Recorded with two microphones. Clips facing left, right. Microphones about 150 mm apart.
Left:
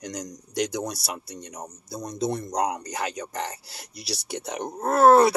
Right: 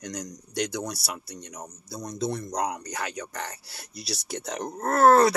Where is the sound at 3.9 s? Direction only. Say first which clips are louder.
Left 1 dB; 10° left (ahead or behind).